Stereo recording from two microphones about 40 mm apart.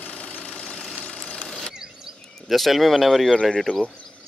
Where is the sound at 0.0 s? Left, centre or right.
Left.